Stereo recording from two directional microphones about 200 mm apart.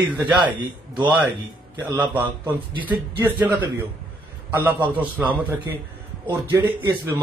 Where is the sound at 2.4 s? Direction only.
10° right (ahead or behind).